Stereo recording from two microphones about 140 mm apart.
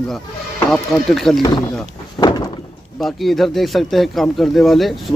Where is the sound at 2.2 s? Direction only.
30° left (ahead or behind).